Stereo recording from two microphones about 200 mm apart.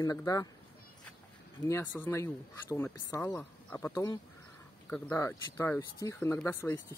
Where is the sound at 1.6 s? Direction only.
10° left (ahead or behind).